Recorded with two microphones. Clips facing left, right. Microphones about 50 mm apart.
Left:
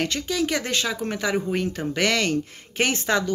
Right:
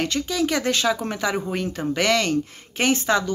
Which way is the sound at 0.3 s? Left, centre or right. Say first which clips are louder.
Right 3 dB; left.